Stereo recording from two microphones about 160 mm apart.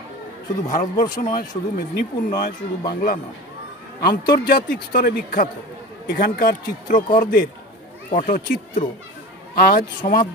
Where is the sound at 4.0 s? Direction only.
70° left (ahead or behind).